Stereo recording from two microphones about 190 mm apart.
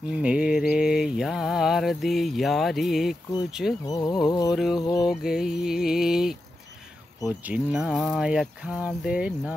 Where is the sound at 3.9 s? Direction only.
20° left (ahead or behind).